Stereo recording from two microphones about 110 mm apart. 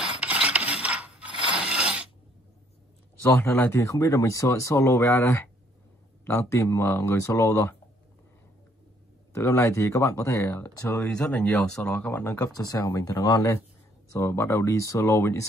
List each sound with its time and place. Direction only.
0.0 s filing: 10° right (ahead or behind)
1.5 s mechanisms: 10° right (ahead or behind)
3.3 s speech: 20° left (ahead or behind)
9.3 s speech: 25° left (ahead or behind)
12.4 s speech: 35° left (ahead or behind)